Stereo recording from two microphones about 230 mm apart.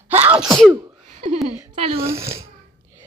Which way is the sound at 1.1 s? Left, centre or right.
Right.